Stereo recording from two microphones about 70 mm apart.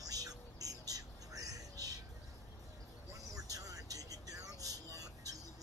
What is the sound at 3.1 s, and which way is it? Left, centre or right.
Vehicle, right.